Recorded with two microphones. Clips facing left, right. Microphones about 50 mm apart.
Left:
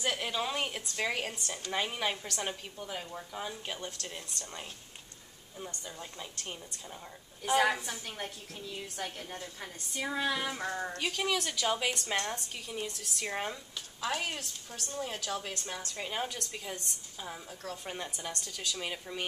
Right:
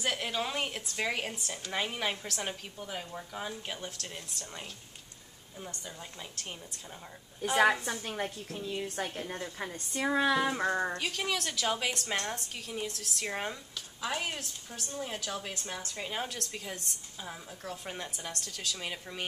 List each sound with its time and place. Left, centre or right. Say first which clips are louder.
0.0 s speech: even; centre
7.8 s a woman's voice: right 5 dB; right
10.0 s speech: right 6 dB; right
11.0 s speech: left 1 dB; centre